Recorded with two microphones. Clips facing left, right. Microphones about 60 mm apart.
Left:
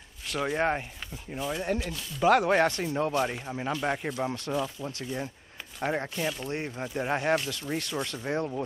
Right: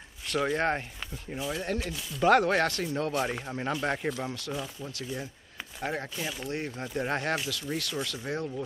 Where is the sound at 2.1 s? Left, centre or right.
Centre.